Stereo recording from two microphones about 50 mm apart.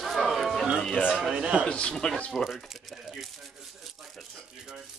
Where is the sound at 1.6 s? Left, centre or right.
Left.